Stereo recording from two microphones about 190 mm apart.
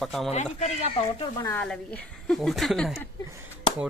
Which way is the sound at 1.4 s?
10° left (ahead or behind).